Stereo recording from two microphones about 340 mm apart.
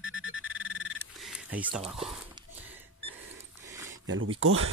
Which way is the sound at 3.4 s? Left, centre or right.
Centre.